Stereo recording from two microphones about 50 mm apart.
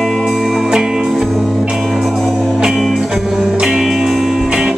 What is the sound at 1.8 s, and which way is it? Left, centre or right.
Music, centre.